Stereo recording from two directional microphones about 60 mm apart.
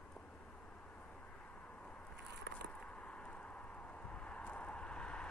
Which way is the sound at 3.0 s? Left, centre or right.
Left.